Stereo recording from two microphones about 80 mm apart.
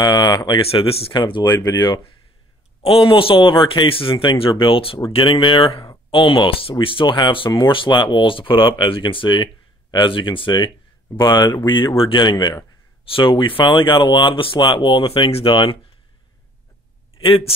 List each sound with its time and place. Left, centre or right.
0.0 s speech: left
0.7 s speech: left
1.6 s speech: left
3.1 s speech: left
11.1 s speech: left
11.6 s speech: left
12.1 s speech: left
13.1 s speech: left